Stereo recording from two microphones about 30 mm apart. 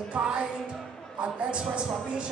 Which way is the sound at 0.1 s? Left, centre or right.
Right.